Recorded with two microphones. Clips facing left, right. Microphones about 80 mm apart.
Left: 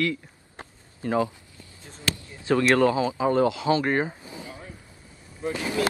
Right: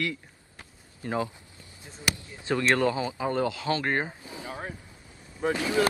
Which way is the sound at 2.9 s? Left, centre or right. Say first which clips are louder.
Left 6 dB; centre.